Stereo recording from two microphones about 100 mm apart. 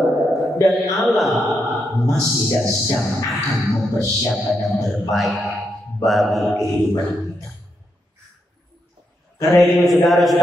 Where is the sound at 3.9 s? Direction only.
Centre (ahead or behind).